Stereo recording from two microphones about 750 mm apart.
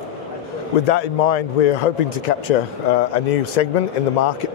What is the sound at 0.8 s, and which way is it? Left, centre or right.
A man's voice, left.